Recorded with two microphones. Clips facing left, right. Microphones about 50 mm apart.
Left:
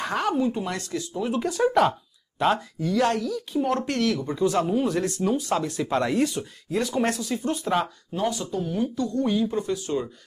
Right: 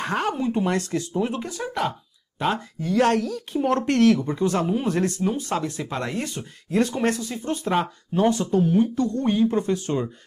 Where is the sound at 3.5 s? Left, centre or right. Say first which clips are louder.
Right 4 dB; right.